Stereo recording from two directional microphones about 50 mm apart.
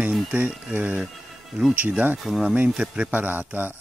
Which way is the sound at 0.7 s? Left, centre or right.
Right.